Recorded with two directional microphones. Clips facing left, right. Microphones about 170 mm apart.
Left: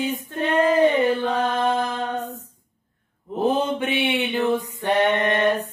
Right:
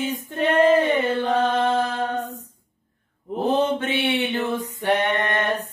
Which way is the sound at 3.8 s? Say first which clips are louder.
Even; 10° left (ahead or behind).